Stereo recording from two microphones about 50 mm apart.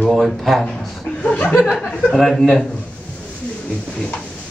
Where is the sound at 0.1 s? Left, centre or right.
Centre.